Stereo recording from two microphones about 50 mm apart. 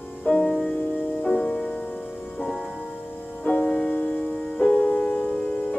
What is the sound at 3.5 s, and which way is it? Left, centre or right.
Music, left.